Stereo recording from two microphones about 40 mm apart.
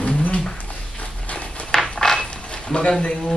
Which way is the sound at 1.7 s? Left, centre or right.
Centre.